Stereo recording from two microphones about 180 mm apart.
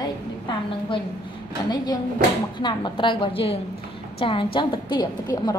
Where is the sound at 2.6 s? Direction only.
25° left (ahead or behind).